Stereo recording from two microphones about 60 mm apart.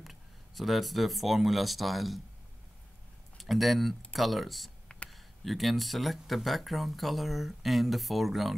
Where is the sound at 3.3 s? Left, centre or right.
Centre.